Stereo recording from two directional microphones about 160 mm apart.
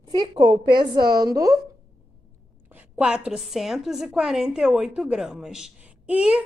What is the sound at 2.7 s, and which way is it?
A woman's voice, 10° right (ahead or behind).